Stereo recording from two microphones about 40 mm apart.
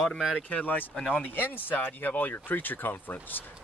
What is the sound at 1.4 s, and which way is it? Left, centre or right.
Speech, left.